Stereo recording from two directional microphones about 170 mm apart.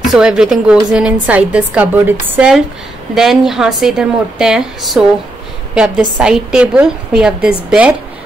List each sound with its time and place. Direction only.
0.0 s a woman's voice: 5° right (ahead or behind)